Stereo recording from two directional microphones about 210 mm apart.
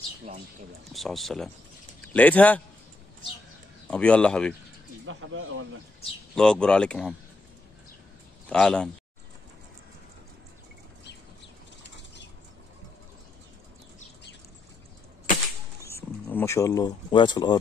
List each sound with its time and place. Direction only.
0.9 s speech: centre (ahead or behind)
3.8 s speech: 5° left (ahead or behind)
5.0 s speech: 65° right (ahead or behind)
6.3 s speech: 5° left (ahead or behind)
8.5 s speech: 5° left (ahead or behind)
16.3 s speech: 10° left (ahead or behind)